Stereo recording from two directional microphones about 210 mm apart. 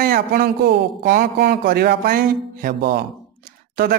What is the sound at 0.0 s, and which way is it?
A man's voice, 45° right (ahead or behind).